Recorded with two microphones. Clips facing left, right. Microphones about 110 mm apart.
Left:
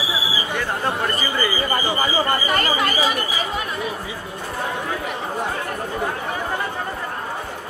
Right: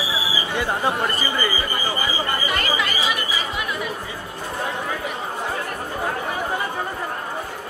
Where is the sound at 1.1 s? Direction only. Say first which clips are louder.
Left 1 dB; centre (ahead or behind).